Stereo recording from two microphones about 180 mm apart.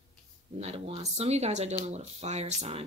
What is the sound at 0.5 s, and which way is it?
Speech, 35° right (ahead or behind).